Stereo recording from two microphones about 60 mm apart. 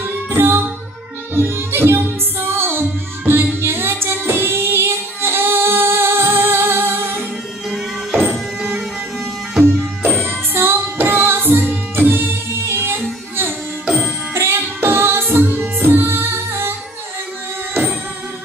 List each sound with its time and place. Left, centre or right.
0.0 s music: right
7.7 s music: centre
8.3 s music: right
9.6 s music: right
13.8 s music: centre
14.3 s music: right